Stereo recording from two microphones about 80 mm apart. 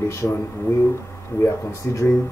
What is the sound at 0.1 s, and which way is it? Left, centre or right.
Speech, left.